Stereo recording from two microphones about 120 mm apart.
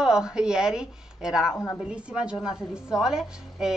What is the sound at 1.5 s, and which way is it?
Speech, 25° left (ahead or behind).